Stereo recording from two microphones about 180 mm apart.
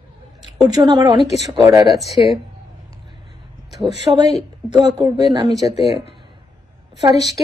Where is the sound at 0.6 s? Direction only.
20° right (ahead or behind).